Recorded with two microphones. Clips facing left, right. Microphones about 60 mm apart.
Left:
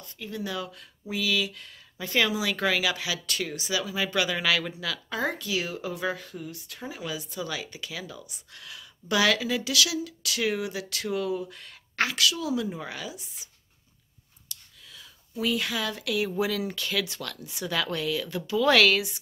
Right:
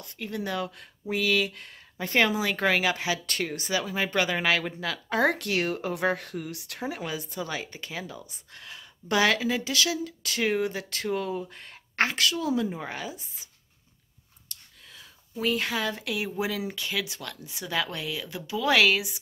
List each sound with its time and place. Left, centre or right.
0.0 s speech: right
5.1 s speech: right
7.0 s speech: right
7.3 s speech: right
14.5 s a sound: right
14.9 s speech: right; by 19.1 s centre